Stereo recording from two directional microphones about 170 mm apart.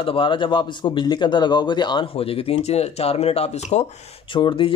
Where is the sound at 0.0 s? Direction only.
30° left (ahead or behind).